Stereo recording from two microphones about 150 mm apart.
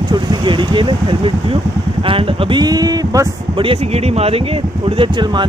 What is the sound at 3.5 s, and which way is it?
Speech, 35° right (ahead or behind).